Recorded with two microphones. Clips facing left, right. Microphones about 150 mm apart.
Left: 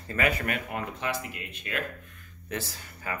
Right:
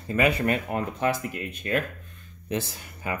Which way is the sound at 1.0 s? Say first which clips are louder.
Right 7 dB; 45° right (ahead or behind).